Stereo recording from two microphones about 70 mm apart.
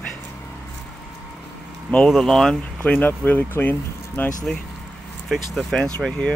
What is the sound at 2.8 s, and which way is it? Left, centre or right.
Speech, centre.